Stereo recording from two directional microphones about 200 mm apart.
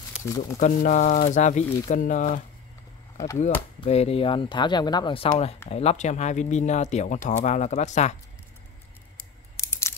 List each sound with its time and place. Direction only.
0.2 s speech: 15° left (ahead or behind)
0.6 s speech: 35° left (ahead or behind)
3.3 s speech: 35° left (ahead or behind)